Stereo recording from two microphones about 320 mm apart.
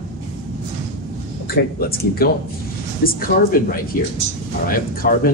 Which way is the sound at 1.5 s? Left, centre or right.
Left.